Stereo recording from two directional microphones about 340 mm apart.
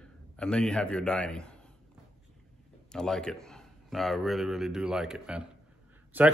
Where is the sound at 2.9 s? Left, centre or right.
Centre.